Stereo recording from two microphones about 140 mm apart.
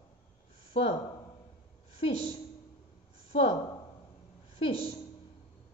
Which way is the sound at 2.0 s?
50° left (ahead or behind).